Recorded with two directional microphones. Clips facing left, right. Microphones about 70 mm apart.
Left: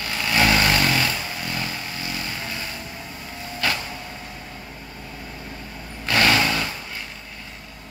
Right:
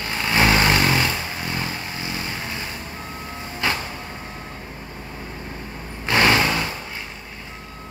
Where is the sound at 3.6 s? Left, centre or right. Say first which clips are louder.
Right 1 dB; right.